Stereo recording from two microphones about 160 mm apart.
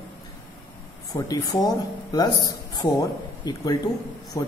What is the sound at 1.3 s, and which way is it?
Music, 25° left (ahead or behind).